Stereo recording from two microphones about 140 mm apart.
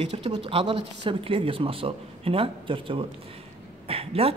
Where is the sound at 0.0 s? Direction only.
50° right (ahead or behind).